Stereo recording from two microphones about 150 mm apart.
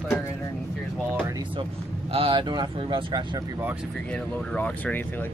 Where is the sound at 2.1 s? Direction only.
35° right (ahead or behind).